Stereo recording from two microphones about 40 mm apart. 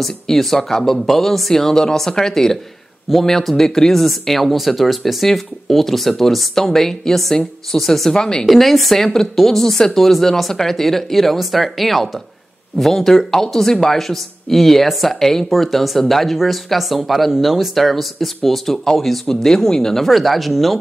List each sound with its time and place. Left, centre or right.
0.0 s speech: centre
8.5 s speech: centre